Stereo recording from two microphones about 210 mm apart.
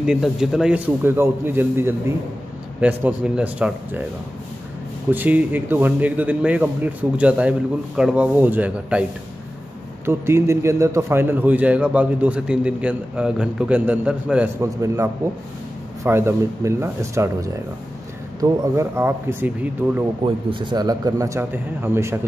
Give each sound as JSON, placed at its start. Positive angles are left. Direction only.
{"t": 0.0, "sound": "a man's voice", "side_deg": -5}
{"t": 5.1, "sound": "a man's voice", "side_deg": -10}
{"t": 10.0, "sound": "a man's voice", "side_deg": -10}
{"t": 20.2, "sound": "a man's voice", "side_deg": -25}